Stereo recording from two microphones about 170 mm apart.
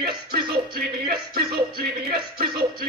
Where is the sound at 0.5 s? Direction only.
60° right (ahead or behind).